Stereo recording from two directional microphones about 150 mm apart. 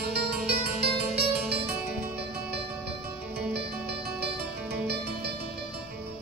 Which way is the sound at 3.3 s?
90° right.